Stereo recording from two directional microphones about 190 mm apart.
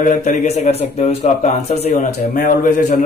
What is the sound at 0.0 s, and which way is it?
Speech, 40° left (ahead or behind).